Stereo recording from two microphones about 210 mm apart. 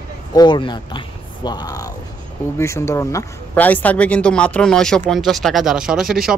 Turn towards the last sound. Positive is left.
turn(degrees=0)  # may be behind; listen again after turning